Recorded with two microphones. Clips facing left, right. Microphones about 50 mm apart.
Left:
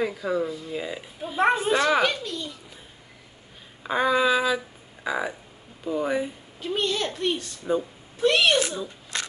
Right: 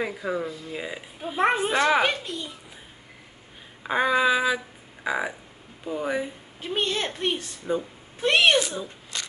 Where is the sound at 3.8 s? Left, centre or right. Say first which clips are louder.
Even; centre.